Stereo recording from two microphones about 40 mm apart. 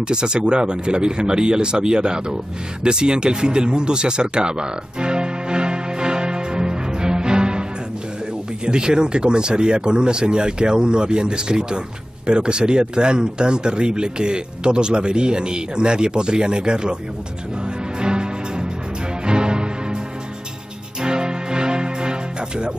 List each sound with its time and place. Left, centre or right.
0.1 s speech: right
2.8 s music: right
8.6 s speech: right
18.0 s music: right
21.0 s music: right